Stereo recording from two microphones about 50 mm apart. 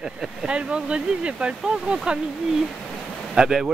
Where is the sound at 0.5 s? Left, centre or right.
Centre.